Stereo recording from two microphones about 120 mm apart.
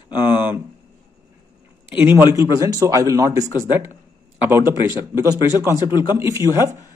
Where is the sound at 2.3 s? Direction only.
25° right (ahead or behind).